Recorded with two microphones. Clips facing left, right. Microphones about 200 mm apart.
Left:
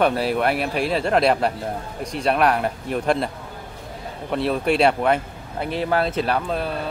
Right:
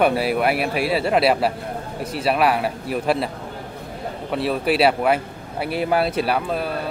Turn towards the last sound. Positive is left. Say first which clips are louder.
# right 1 dB
turn(degrees=-5)  # may be behind; listen again after turning